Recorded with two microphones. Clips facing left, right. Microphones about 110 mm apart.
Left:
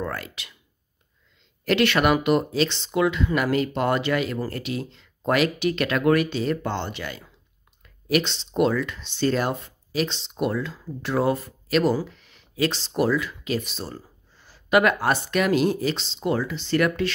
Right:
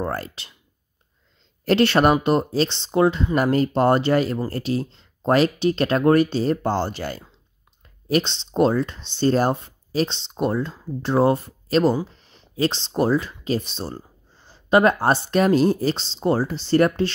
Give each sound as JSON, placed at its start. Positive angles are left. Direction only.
{"t": 0.0, "sound": "speech", "side_deg": -35}
{"t": 1.6, "sound": "speech", "side_deg": -35}